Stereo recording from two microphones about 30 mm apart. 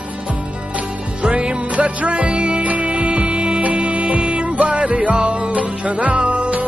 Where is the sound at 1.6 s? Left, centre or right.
Right.